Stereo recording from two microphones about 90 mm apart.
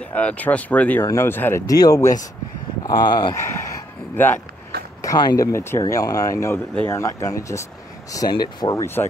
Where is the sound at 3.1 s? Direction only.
55° left (ahead or behind).